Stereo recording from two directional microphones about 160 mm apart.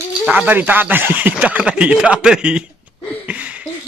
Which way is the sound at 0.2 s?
10° right (ahead or behind).